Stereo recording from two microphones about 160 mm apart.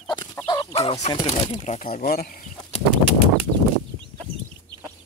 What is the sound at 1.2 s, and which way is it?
Speech, 40° left (ahead or behind).